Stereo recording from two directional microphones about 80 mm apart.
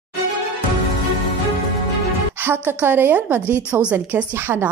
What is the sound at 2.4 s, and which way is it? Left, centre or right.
A woman's voice, right.